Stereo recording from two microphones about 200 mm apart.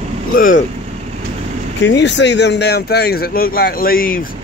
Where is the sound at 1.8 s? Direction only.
60° left (ahead or behind); by 4.1 s 45° left (ahead or behind).